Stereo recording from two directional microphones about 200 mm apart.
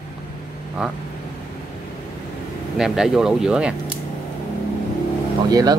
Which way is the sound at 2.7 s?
5° right (ahead or behind).